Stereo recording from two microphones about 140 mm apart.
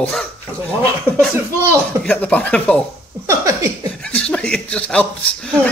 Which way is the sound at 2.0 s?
10° left (ahead or behind).